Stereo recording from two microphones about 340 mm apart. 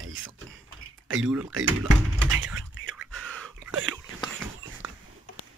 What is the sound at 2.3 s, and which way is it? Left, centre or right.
Computer keyboard, right.